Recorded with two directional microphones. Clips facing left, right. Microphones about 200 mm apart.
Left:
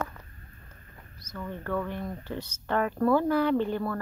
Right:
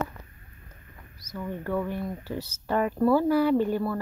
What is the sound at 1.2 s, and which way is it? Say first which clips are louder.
Speech: right 3 dB; 10° right (ahead or behind).